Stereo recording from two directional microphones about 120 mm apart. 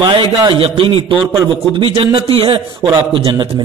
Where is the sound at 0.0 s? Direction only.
40° right (ahead or behind).